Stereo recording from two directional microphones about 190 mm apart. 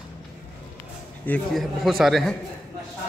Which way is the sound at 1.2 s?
5° left (ahead or behind).